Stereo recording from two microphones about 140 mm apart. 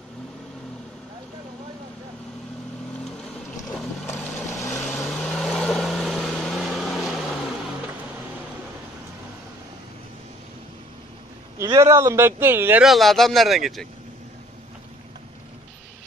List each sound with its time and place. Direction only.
4.2 s vehicle: centre (ahead or behind)
11.8 s a man's voice: 20° right (ahead or behind)
12.8 s speech: centre (ahead or behind)